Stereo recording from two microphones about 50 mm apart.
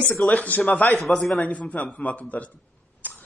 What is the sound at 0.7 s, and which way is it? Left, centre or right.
Speech, centre.